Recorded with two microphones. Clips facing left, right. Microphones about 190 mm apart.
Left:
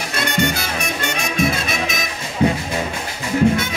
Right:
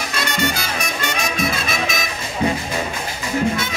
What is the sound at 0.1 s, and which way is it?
Music, 55° left (ahead or behind).